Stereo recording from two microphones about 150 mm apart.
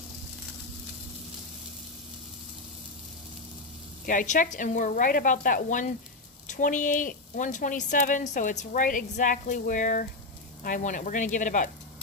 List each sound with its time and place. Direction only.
4.0 s a woman's voice: 60° left (ahead or behind)